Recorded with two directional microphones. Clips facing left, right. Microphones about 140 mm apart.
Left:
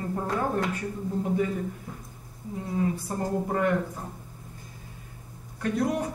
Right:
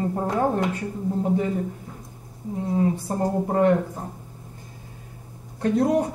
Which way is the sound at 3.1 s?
40° right (ahead or behind).